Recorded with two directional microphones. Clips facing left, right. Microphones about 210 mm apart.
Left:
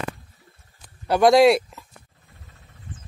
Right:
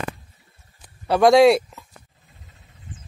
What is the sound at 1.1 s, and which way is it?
Speech, centre (ahead or behind).